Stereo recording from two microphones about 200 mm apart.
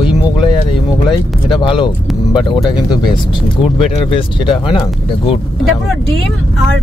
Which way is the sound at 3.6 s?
25° left (ahead or behind).